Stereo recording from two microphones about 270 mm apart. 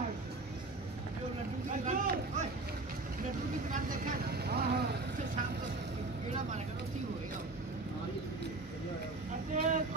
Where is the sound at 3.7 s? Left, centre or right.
Right.